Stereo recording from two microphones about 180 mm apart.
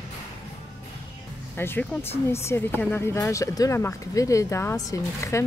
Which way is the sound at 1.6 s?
10° left (ahead or behind).